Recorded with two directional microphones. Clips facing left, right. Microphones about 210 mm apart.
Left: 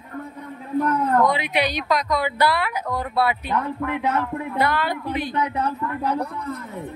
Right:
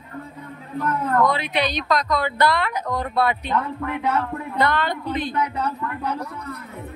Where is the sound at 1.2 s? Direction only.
15° left (ahead or behind).